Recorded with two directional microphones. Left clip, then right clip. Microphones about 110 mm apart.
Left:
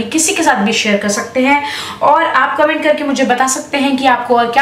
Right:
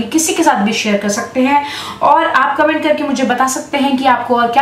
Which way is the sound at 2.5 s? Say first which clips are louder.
Left 1 dB; 5° left (ahead or behind).